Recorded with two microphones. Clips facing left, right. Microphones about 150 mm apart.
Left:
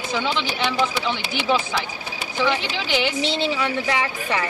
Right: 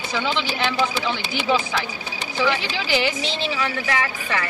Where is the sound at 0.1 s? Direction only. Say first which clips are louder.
Even; 5° left (ahead or behind).